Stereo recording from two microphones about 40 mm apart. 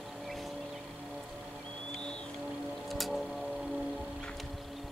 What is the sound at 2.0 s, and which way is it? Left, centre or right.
Music, left.